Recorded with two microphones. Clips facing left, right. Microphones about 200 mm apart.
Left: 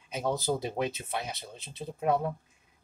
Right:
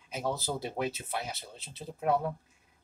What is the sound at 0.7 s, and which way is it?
Speech, 20° left (ahead or behind).